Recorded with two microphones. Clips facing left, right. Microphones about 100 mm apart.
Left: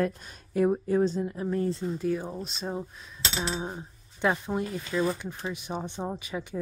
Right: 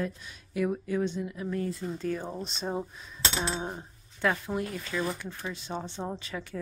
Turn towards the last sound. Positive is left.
turn(degrees=15)  # may be behind; listen again after turning